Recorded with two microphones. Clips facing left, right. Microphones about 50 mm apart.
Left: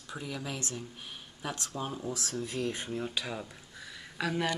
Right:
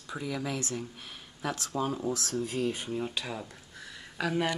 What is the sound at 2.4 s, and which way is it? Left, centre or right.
Speech, right.